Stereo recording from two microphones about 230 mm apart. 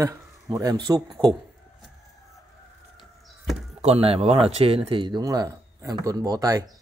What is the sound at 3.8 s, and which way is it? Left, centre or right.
Speech, right.